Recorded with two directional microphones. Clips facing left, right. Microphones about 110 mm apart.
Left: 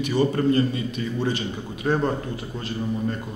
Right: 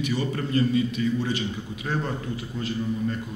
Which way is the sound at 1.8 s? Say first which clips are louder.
Left 6 dB; 40° left (ahead or behind).